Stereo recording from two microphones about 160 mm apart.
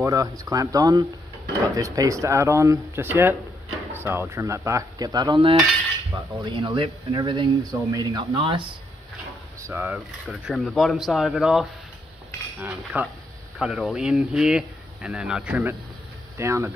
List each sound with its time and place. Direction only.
0.0 s speech: 20° right (ahead or behind)
9.6 s speech: 15° right (ahead or behind)
10.2 s speech: centre (ahead or behind); by 16.7 s 15° right (ahead or behind)